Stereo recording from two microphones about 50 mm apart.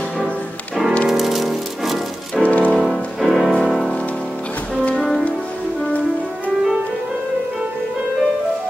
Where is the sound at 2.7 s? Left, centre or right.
Centre.